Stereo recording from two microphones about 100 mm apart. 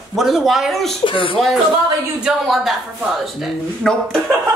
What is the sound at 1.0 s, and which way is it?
Speech, 60° left (ahead or behind).